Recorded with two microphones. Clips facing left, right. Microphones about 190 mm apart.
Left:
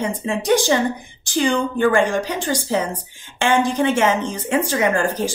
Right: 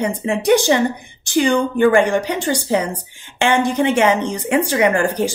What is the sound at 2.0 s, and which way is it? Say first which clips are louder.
Speech: right 3 dB; 65° right (ahead or behind).